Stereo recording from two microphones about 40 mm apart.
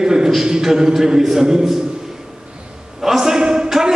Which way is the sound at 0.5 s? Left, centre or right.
Centre.